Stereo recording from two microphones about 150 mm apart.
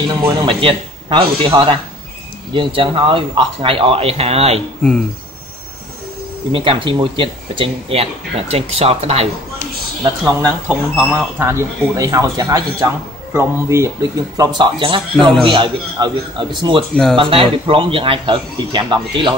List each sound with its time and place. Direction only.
0.4 s speech: 35° right (ahead or behind)
6.5 s speech: 35° right (ahead or behind)
10.2 s speech: 10° right (ahead or behind); by 16.4 s 30° right (ahead or behind)
16.9 s speech: 5° left (ahead or behind)
17.2 s speech: 35° right (ahead or behind)